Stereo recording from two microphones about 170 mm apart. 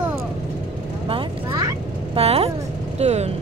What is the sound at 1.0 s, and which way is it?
Vehicle, 30° right (ahead or behind).